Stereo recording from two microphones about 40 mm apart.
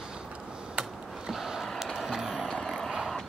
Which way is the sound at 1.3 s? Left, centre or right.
Centre.